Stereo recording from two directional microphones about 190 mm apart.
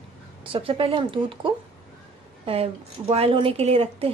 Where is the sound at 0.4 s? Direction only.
30° right (ahead or behind).